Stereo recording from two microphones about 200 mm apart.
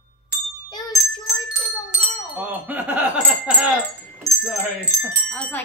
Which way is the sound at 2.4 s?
10° right (ahead or behind).